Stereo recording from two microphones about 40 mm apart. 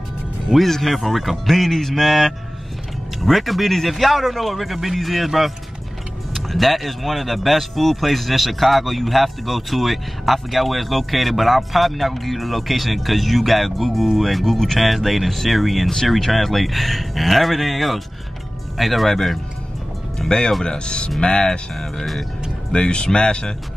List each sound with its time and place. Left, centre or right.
0.7 s speech: centre
20.2 s speech: centre